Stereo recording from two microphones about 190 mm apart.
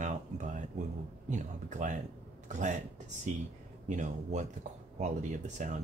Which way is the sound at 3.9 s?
40° right (ahead or behind).